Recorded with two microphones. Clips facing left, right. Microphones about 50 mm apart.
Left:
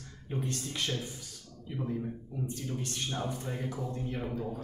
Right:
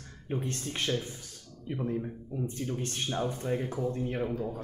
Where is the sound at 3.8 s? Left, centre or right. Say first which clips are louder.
Right 5 dB; right.